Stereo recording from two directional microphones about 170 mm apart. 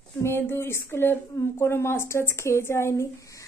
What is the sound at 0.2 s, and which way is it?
Speech, 15° left (ahead or behind).